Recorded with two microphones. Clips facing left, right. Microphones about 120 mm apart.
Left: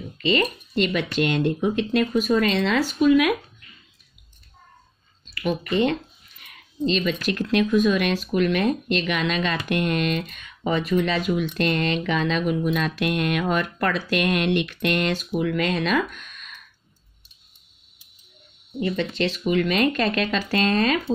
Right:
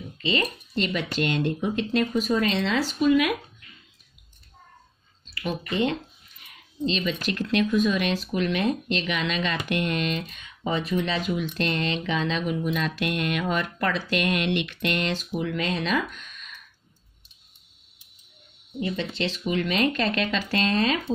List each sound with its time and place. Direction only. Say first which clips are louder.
0.2 s speech: left 5 dB; 60° left (ahead or behind)
5.3 s speech: left 5 dB; 60° left (ahead or behind)
6.4 s speech: left 3 dB; 55° left (ahead or behind)
18.8 s speech: left 4 dB; 55° left (ahead or behind)